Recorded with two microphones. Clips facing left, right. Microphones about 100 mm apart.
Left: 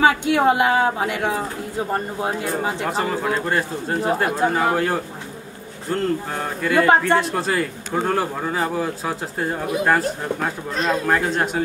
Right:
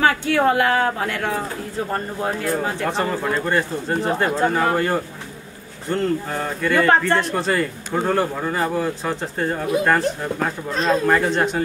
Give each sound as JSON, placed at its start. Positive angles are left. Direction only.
{"t": 0.0, "sound": "speech", "side_deg": 15}
{"t": 2.9, "sound": "speech", "side_deg": 5}